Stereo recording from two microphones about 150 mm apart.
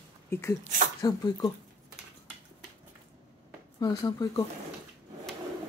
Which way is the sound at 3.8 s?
25° left (ahead or behind).